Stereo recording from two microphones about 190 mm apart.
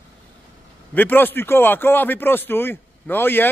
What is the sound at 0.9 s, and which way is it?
A man's voice, 10° left (ahead or behind).